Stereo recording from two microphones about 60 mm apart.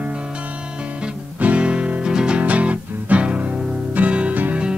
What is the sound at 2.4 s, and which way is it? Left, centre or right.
Music, right.